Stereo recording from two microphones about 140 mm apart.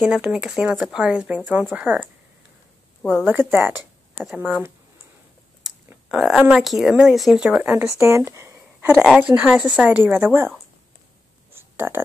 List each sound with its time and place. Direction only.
0.0 s speech: 5° right (ahead or behind)
3.0 s a woman's voice: 5° left (ahead or behind)
3.3 s speech: 15° right (ahead or behind)
6.0 s speech: 5° right (ahead or behind); by 8.9 s 20° right (ahead or behind)
8.9 s speech: 5° right (ahead or behind)
11.5 s a sound: 15° right (ahead or behind)